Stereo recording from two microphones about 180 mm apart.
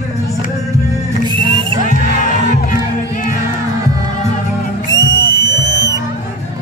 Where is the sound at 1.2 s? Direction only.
25° right (ahead or behind).